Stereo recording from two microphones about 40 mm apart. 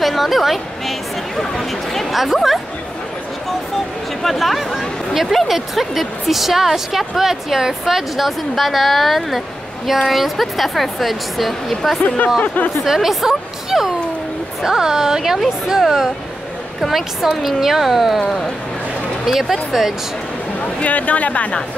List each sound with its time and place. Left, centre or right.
0.0 s a woman's voice: centre
4.2 s a woman's voice: centre
12.8 s a woman's voice: centre
19.2 s a woman's voice: centre
20.8 s speech: left